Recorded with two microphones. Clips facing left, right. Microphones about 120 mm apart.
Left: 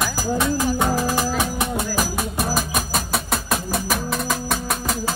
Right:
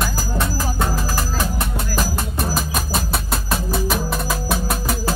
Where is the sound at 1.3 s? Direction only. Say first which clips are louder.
Left 2 dB; 15° left (ahead or behind).